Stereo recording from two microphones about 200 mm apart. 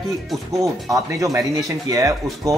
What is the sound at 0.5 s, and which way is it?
Speech, 15° right (ahead or behind).